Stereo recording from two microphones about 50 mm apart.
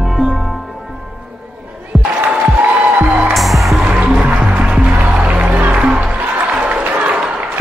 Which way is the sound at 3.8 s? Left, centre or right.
Right.